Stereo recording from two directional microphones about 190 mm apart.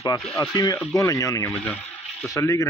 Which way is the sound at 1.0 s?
15° left (ahead or behind).